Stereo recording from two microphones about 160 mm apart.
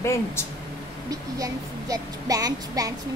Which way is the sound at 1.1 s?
20° right (ahead or behind).